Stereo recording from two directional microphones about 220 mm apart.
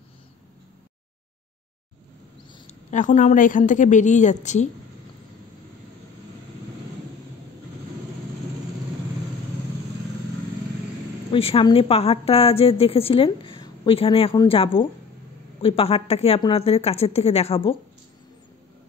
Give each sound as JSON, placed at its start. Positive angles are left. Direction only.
{"t": 2.9, "sound": "a woman's voice", "side_deg": 35}
{"t": 11.3, "sound": "a woman's voice", "side_deg": 25}